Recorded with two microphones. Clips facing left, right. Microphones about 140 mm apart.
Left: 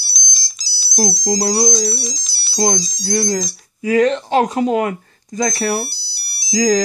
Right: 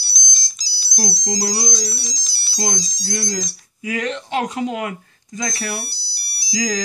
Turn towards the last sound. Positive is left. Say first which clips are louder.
# left 8 dB
turn(degrees=40)  # may be behind; listen again after turning